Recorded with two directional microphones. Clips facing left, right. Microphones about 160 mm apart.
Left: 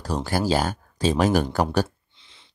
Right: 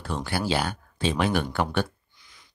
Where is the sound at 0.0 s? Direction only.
40° left (ahead or behind).